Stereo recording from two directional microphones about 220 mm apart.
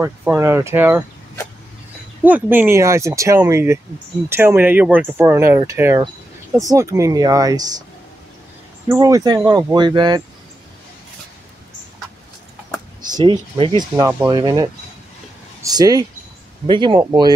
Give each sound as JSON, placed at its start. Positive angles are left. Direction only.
{"t": 0.0, "sound": "speech", "side_deg": -10}
{"t": 2.2, "sound": "speech", "side_deg": -10}
{"t": 8.8, "sound": "speech", "side_deg": -15}
{"t": 13.1, "sound": "speech", "side_deg": -20}